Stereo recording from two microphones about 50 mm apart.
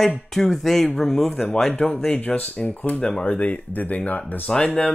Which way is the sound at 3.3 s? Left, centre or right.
Left.